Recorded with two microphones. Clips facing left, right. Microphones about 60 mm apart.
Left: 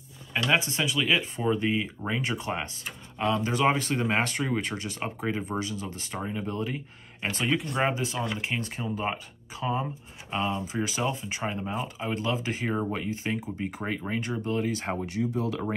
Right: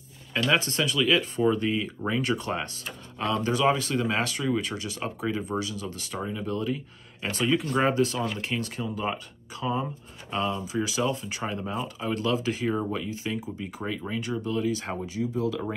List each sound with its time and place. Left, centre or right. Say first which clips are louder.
0.3 s speech: right 1 dB; centre
3.5 s speech: right 3 dB; left
15.0 s speech: right 3 dB; left